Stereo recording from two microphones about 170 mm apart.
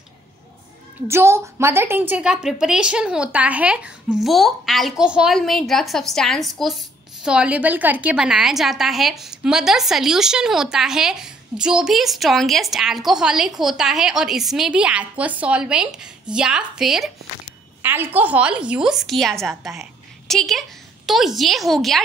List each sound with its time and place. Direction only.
1.0 s a woman's voice: 15° right (ahead or behind); by 22.0 s centre (ahead or behind)